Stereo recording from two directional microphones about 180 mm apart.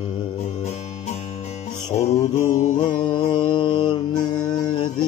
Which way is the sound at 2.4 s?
45° left (ahead or behind).